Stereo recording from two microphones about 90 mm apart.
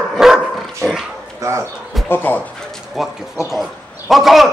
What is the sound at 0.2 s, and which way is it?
Dog, centre (ahead or behind).